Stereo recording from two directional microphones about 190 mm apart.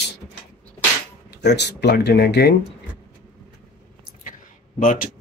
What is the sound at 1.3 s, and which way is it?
Speech, 60° left (ahead or behind).